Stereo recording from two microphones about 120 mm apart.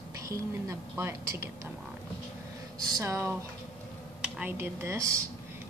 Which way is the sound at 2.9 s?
25° right (ahead or behind).